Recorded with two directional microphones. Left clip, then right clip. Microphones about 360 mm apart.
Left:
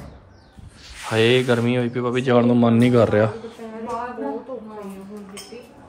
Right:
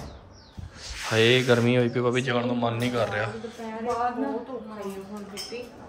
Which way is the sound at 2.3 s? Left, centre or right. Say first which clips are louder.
Left 9 dB; centre.